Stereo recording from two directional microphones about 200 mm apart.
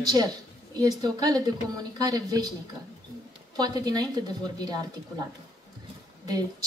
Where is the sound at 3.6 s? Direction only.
20° right (ahead or behind).